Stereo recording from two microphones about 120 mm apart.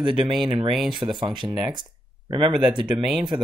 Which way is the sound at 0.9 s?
40° right (ahead or behind).